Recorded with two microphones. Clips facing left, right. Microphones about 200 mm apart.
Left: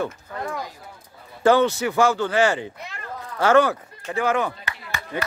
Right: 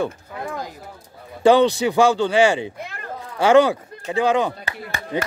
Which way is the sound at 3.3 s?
15° right (ahead or behind).